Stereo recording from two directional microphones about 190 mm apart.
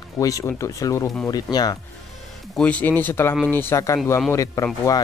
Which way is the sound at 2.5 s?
5° left (ahead or behind).